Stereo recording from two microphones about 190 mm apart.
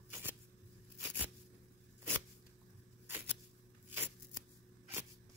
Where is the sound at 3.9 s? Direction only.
10° right (ahead or behind).